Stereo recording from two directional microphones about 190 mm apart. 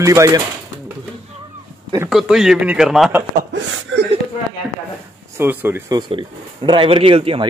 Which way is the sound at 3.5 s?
70° right (ahead or behind).